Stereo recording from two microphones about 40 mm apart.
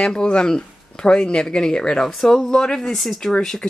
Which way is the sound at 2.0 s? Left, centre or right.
Centre.